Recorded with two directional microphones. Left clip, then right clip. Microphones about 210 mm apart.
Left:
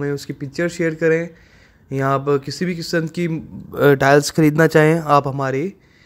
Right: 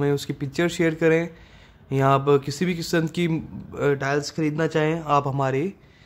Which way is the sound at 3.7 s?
30° left (ahead or behind).